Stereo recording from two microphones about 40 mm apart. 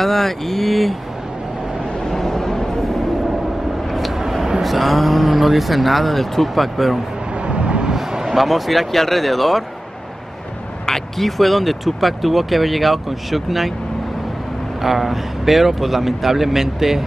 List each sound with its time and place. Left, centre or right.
0.0 s speech: centre
2.0 s vehicle: centre
4.2 s a sound: centre
4.6 s speech: centre
7.4 s vehicle: right
7.9 s speech: centre
10.9 s speech: centre
14.8 s speech: centre